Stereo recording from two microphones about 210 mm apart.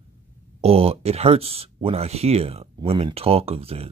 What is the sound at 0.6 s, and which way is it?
Speech, 30° right (ahead or behind).